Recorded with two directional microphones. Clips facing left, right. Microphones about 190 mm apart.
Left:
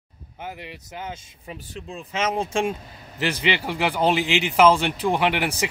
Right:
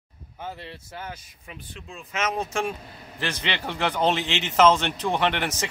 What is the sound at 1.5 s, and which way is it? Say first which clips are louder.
Speech: left 6 dB; 35° left (ahead or behind).